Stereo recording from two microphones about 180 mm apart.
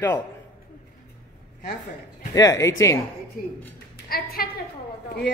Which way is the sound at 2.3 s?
20° left (ahead or behind).